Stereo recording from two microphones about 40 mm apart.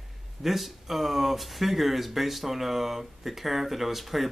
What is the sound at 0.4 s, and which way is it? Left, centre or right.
Speech, centre.